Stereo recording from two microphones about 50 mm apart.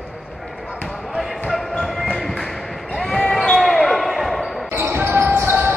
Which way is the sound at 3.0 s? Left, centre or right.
Centre.